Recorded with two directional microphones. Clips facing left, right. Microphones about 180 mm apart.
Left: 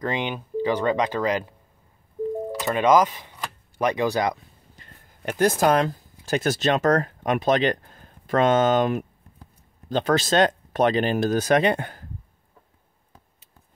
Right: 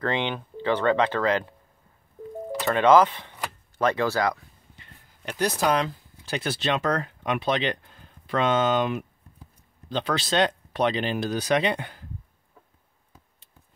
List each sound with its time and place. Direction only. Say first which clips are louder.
0.0 s speech: even; 10° left (ahead or behind)
2.6 s speech: right 1 dB; 15° left (ahead or behind)
4.7 s speech: left 2 dB; 50° left (ahead or behind)